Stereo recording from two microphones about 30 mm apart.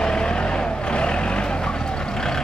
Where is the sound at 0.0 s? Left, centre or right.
Left.